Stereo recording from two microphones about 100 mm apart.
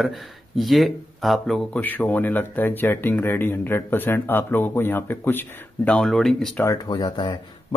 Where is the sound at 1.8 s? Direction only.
15° left (ahead or behind).